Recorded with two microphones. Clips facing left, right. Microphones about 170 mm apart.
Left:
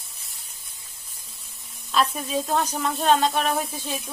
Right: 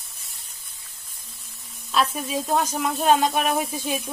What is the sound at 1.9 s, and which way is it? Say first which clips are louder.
Speech: even; centre (ahead or behind).